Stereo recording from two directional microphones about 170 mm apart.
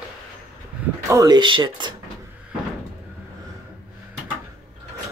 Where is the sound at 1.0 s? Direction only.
20° right (ahead or behind).